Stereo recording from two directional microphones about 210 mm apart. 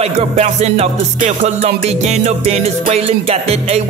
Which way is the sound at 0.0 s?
30° right (ahead or behind).